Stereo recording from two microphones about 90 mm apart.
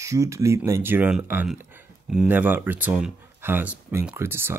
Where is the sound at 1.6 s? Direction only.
25° right (ahead or behind).